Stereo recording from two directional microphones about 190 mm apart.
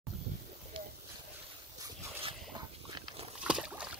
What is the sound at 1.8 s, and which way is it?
Dog, 20° right (ahead or behind).